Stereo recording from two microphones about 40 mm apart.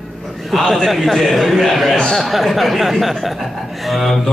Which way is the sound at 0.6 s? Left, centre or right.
Centre.